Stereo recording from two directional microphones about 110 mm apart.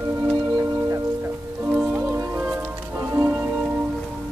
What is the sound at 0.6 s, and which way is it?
Music, 25° right (ahead or behind).